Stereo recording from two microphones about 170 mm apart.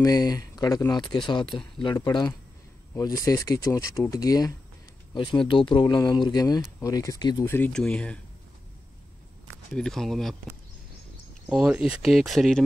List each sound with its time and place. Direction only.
0.0 s speech: 20° left (ahead or behind); by 8.2 s 5° left (ahead or behind)
9.8 s speech: centre (ahead or behind)
11.4 s speech: 5° right (ahead or behind)